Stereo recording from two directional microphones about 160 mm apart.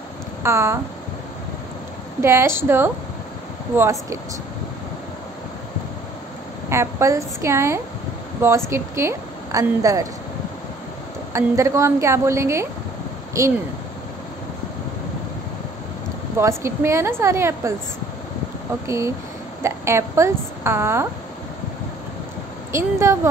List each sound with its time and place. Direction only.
0.4 s speech: 15° right (ahead or behind)
2.2 s a woman's voice: 15° right (ahead or behind)
6.7 s a woman's voice: 15° right (ahead or behind)
11.3 s a woman's voice: 15° right (ahead or behind)
16.3 s a woman's voice: 15° right (ahead or behind)
18.9 s a woman's voice: 20° right (ahead or behind)
22.7 s a woman's voice: 15° right (ahead or behind)